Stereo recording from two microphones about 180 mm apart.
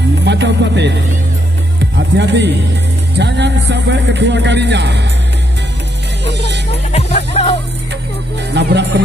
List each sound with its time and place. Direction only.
0.2 s music: 75° right (ahead or behind)
2.1 s a man's voice: 75° right (ahead or behind)
6.2 s music: 70° right (ahead or behind)
6.9 s speech: 35° left (ahead or behind)
8.5 s a man's voice: 70° right (ahead or behind)